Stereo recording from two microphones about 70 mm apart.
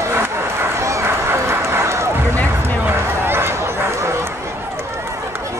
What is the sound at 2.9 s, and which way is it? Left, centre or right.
Run, right.